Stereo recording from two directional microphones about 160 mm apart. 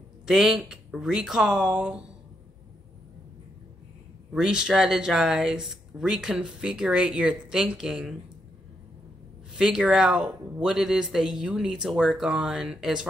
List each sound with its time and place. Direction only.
0.3 s speech: centre (ahead or behind)
4.3 s speech: 5° right (ahead or behind)
9.5 s speech: 5° right (ahead or behind)